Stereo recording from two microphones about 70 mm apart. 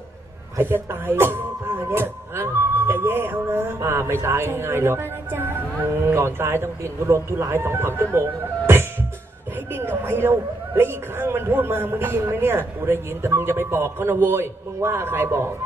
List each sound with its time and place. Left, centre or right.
0.6 s speech: right